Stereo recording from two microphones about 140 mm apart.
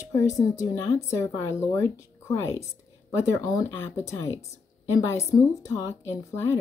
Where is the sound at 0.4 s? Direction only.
20° left (ahead or behind).